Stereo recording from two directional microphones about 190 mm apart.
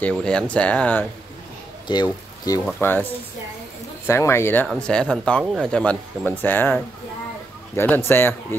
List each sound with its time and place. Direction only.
0.0 s speech: 5° left (ahead or behind)
1.9 s speech: 25° left (ahead or behind)
2.6 s speech: 10° left (ahead or behind)
4.1 s speech: 15° left (ahead or behind)